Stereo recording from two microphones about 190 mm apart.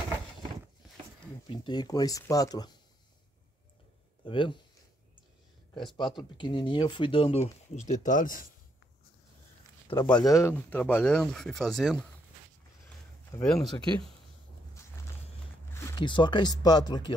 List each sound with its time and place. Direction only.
1.5 s speech: 25° left (ahead or behind)
4.2 s speech: 25° left (ahead or behind)
5.9 s speech: 25° left (ahead or behind); by 8.5 s 45° left (ahead or behind)
9.8 s speech: 25° left (ahead or behind); by 12.1 s centre (ahead or behind)
13.4 s speech: 5° left (ahead or behind)
16.0 s speech: 25° left (ahead or behind)